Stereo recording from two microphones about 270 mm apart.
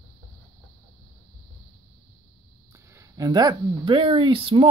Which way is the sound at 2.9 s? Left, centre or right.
Centre.